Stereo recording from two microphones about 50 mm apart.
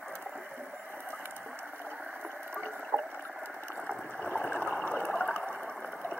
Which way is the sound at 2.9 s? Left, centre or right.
Right.